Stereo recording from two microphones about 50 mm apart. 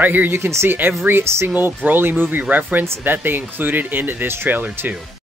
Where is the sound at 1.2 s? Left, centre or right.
Right.